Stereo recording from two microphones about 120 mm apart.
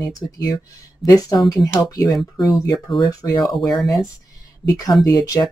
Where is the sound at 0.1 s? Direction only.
30° left (ahead or behind).